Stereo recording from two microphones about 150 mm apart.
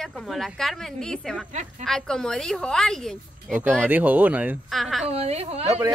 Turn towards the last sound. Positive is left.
turn(degrees=-45)  # may be behind; listen again after turning